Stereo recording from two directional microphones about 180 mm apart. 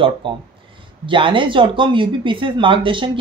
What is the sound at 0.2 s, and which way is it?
Speech, 30° right (ahead or behind).